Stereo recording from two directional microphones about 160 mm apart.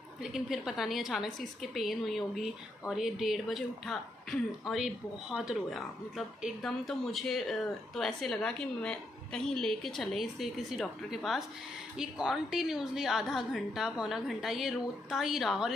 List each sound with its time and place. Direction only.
0.2 s a woman's voice: 5° right (ahead or behind)